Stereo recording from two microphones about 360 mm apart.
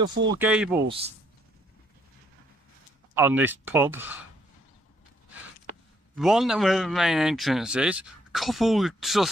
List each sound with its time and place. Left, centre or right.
0.4 s speech: centre
0.8 s speech: centre
3.2 s speech: centre
6.1 s speech: centre